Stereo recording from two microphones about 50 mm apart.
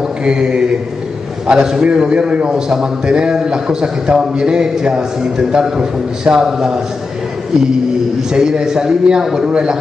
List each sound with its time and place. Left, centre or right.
0.2 s a man's voice: centre
8.3 s a man's voice: centre